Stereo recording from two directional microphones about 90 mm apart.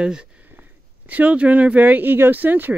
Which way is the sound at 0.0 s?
10° right (ahead or behind).